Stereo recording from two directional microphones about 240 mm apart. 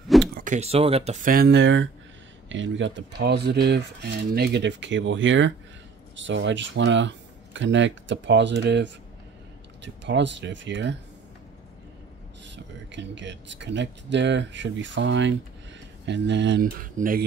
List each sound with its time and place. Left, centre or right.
0.3 s speech: right
10.0 s speech: right
12.4 s speech: right